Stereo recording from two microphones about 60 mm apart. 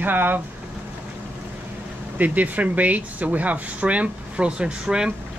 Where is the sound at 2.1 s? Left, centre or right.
Right.